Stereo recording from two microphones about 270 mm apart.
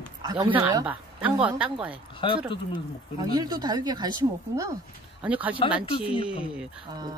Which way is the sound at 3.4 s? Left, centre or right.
Centre.